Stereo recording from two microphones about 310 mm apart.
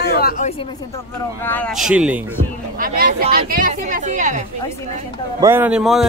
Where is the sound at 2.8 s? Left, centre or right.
Right.